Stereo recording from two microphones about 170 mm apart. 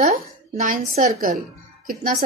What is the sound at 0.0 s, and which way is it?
A woman's voice, 45° right (ahead or behind).